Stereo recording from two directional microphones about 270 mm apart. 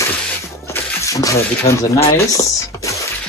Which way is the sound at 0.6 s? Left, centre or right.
Centre.